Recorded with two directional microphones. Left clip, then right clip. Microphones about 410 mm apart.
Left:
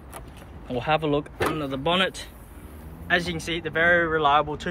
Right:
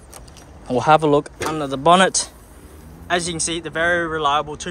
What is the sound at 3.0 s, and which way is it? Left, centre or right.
Speech, centre.